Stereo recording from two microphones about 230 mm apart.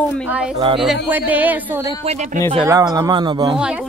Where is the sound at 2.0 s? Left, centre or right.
Right.